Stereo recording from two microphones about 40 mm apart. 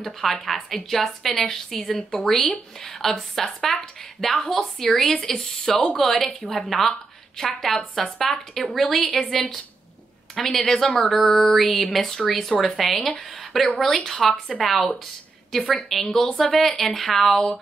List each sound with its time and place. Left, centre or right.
0.0 s a woman's voice: centre
6.4 s speech: centre
6.7 s a woman's voice: centre
10.9 s a woman's voice: centre